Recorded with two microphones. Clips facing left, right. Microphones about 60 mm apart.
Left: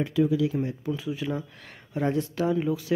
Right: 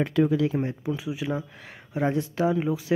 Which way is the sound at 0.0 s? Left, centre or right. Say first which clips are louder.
Right 1 dB; right.